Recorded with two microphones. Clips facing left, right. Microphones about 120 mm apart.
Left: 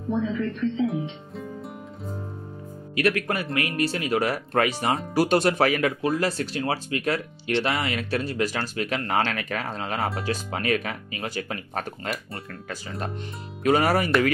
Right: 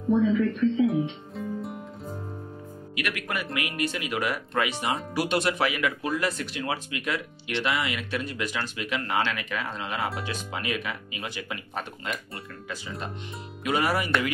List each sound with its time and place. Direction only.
0.1 s music: 5° right (ahead or behind)
3.0 s speech: 35° left (ahead or behind)
13.7 s speech: 40° left (ahead or behind)